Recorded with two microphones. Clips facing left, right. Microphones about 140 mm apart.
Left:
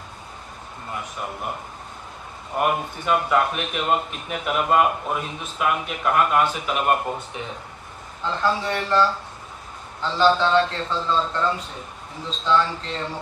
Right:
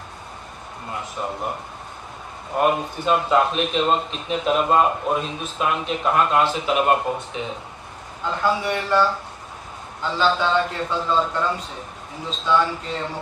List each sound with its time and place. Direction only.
2.6 s a man's voice: 20° right (ahead or behind)
12.4 s a man's voice: 10° right (ahead or behind)